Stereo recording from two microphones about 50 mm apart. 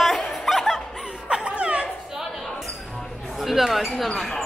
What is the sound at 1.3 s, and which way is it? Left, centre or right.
Music, right.